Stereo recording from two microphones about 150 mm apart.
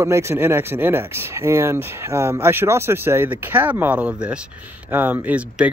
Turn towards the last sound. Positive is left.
turn(degrees=-10)  # may be behind; listen again after turning